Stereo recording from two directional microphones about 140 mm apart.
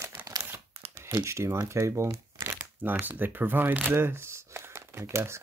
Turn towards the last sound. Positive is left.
turn(degrees=-20)  # may be behind; listen again after turning